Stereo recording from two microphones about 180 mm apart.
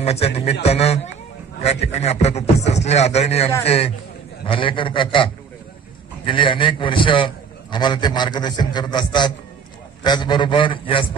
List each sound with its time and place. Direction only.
0.0 s a man's voice: 35° left (ahead or behind)